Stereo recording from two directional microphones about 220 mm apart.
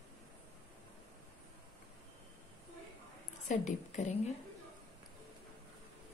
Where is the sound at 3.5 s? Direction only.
35° left (ahead or behind).